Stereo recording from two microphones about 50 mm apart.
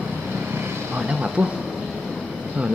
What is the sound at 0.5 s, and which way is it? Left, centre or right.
Vehicle, right.